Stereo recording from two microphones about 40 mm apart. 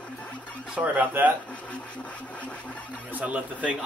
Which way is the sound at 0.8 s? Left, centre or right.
Right.